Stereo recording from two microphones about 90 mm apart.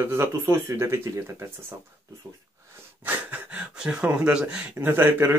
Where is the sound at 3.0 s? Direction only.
20° right (ahead or behind).